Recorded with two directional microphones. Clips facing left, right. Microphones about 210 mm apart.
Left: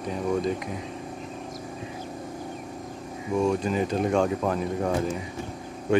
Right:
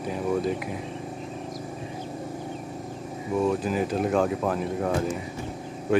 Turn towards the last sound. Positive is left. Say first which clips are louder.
# even
turn(degrees=-5)  # may be behind; listen again after turning